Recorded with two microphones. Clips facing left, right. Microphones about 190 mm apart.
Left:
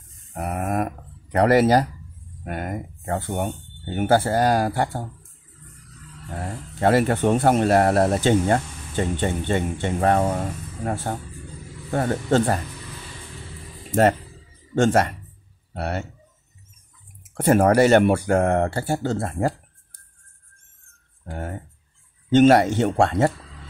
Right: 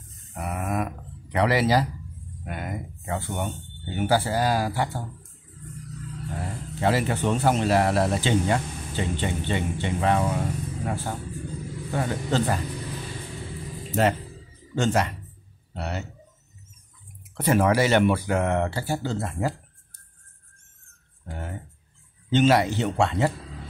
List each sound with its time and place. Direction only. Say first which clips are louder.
0.3 s a sound: left 4 dB; 45° left (ahead or behind)
2.4 s speech: left 4 dB; 50° left (ahead or behind)
6.3 s speech: left 4 dB; 50° left (ahead or behind)
14.8 s speech: left 5 dB; 50° left (ahead or behind)
17.3 s speech: left 4 dB; 50° left (ahead or behind)
21.3 s speech: left 4 dB; 50° left (ahead or behind)